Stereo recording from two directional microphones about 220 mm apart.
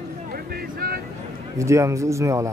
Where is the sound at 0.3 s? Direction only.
45° right (ahead or behind).